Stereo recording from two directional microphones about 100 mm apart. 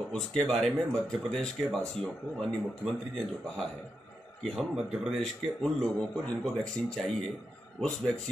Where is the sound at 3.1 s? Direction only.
Centre (ahead or behind).